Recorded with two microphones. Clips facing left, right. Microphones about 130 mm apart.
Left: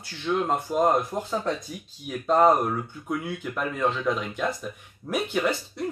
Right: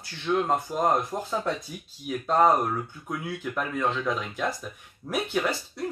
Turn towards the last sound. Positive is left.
turn(degrees=0)  # may be behind; listen again after turning